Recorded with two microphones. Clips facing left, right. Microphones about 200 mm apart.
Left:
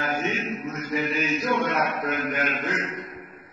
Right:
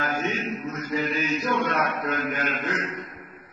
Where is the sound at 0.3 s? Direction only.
15° left (ahead or behind).